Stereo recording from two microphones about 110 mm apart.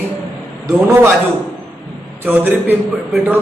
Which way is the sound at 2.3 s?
20° right (ahead or behind).